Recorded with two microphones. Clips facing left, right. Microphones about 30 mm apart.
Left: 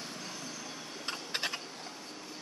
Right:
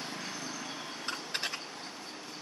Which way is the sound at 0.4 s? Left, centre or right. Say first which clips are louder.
Right 3 dB; right.